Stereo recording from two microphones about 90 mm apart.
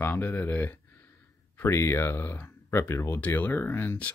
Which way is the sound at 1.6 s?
30° left (ahead or behind).